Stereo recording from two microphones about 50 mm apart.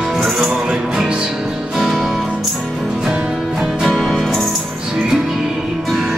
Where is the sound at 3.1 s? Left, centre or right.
Right.